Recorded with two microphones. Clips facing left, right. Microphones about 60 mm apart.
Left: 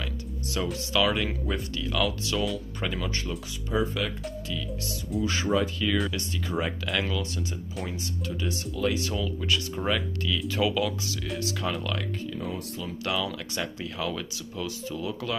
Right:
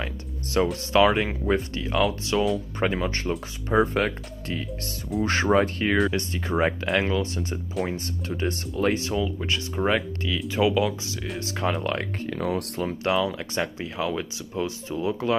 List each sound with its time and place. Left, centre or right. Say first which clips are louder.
0.0 s music: right 2 dB; right
0.9 s speech: right 6 dB; right
2.0 s speech: right 5 dB; right
2.8 s speech: right 6 dB; right
7.8 s speech: right 8 dB; centre
8.3 s speech: right 5 dB; right
9.1 s speech: right 2 dB; right
12.3 s speech: right 6 dB; right
13.0 s speech: right 5 dB; right